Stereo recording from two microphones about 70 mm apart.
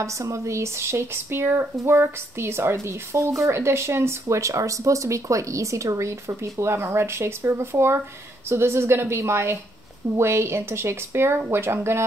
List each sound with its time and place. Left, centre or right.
0.0 s speech: right